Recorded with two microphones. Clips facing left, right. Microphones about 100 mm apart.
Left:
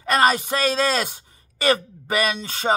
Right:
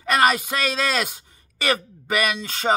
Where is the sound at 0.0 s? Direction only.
30° left (ahead or behind).